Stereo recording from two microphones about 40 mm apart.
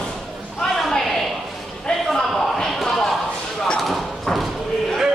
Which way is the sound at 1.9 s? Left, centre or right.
Left.